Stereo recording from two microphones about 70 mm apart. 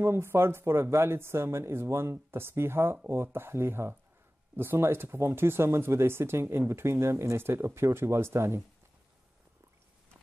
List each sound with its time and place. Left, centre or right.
0.0 s speech: right